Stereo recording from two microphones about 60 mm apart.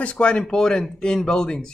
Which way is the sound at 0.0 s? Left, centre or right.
Centre.